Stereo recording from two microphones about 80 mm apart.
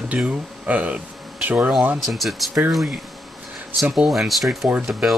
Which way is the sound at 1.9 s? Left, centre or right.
Centre.